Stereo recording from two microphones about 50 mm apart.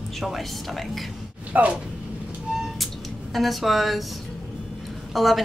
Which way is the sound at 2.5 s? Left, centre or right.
Centre.